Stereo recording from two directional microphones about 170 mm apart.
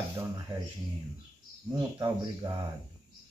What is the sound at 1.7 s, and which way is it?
Speech, 25° right (ahead or behind).